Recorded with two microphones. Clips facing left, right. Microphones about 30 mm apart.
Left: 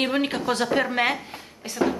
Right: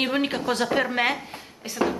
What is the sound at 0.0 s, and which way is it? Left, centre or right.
A woman's voice, centre.